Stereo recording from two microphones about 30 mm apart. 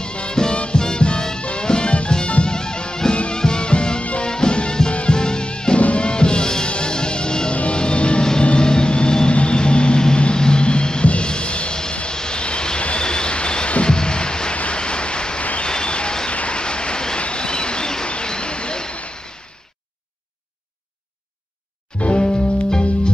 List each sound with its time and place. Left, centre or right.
0.0 s music: left
5.8 s music: left
6.0 s music: left
8.2 s music: left
8.5 s vehicle: left
9.3 s music: left
11.9 s vehicle: left
13.8 s music: left
14.5 s a sound: left
16.3 s vehicle: left
17.2 s bird: left
18.0 s a sound: left
22.2 s music: left